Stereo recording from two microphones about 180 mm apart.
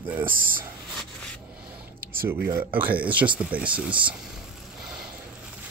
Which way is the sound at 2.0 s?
55° right (ahead or behind).